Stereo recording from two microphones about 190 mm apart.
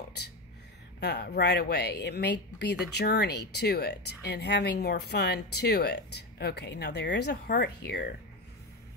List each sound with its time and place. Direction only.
1.0 s a woman's voice: 60° left (ahead or behind)